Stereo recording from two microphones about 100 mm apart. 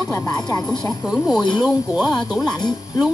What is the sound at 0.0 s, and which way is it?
Speech, 40° left (ahead or behind).